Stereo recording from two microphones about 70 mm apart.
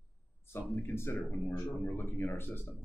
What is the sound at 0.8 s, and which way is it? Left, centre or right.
Speech, left.